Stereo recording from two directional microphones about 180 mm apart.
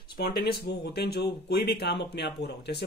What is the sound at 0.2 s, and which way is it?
Speech, 60° left (ahead or behind).